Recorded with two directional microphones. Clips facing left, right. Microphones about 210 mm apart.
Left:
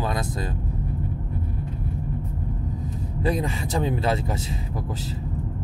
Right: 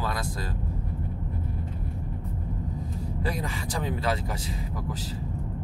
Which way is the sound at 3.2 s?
20° left (ahead or behind).